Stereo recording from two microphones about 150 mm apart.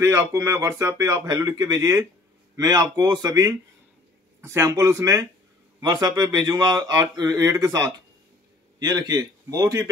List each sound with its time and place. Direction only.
0.0 s a man's voice: 20° right (ahead or behind)